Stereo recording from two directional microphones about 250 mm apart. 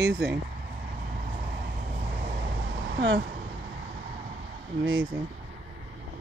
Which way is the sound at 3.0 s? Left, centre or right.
Right.